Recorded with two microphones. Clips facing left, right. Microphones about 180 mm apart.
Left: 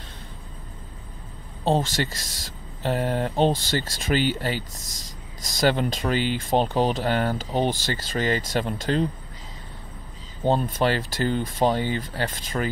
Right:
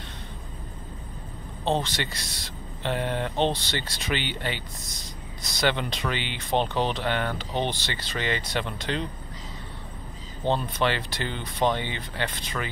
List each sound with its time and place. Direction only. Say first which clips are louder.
1.6 s speech: left 4 dB; 40° left (ahead or behind)
10.5 s speech: left 3 dB; 40° left (ahead or behind)